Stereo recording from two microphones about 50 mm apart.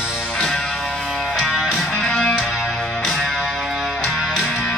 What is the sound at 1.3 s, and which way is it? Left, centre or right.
Music, left.